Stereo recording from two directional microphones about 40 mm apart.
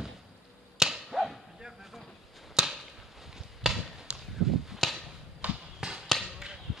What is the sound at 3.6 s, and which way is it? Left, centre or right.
Basketball bounce, centre.